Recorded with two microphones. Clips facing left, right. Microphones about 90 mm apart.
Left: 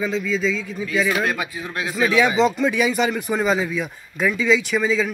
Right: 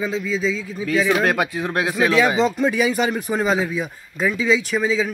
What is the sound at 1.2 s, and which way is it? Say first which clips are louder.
Speech: right 4 dB; 65° right (ahead or behind).